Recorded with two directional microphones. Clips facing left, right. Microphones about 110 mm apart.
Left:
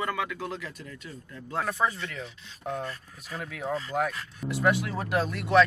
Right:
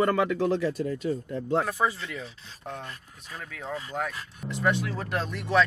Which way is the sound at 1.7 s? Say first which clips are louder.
Right 1 dB; 5° right (ahead or behind).